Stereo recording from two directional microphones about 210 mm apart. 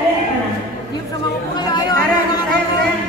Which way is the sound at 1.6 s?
20° left (ahead or behind).